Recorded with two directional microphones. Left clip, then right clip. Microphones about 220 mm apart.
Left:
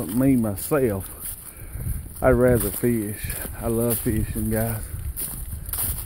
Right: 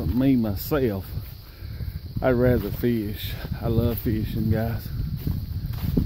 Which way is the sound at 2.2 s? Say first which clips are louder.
Left 3 dB; 15° right (ahead or behind).